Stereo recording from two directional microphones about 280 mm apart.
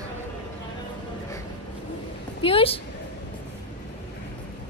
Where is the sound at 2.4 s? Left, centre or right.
Centre.